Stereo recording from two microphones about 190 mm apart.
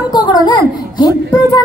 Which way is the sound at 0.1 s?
25° left (ahead or behind).